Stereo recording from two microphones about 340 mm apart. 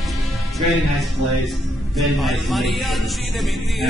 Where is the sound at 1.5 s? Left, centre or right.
Centre.